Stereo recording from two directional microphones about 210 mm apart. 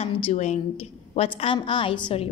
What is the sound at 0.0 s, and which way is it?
A woman's voice, 30° left (ahead or behind).